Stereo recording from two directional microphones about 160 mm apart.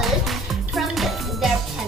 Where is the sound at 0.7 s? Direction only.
Centre (ahead or behind).